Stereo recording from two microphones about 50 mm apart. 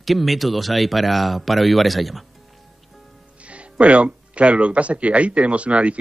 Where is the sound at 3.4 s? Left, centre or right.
Right.